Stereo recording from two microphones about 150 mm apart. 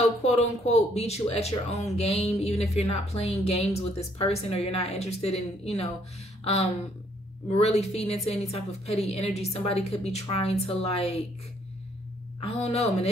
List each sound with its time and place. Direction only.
0.2 s speech: 45° left (ahead or behind)
12.4 s speech: 45° left (ahead or behind)